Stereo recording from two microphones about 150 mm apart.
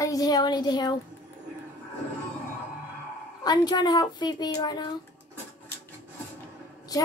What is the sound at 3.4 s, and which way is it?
A woman's voice, 25° left (ahead or behind).